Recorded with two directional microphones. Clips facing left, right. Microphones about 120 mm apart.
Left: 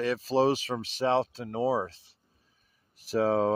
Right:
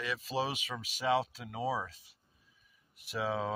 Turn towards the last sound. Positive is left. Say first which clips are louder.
# left 10 dB
turn(degrees=40)  # may be behind; listen again after turning